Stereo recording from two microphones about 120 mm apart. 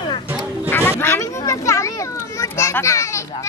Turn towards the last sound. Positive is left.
turn(degrees=25)  # may be behind; listen again after turning